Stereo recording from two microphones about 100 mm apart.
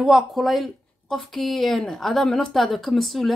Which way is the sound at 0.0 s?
Centre (ahead or behind).